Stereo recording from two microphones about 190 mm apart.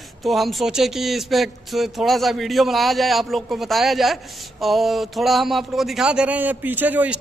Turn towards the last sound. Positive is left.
turn(degrees=-10)  # may be behind; listen again after turning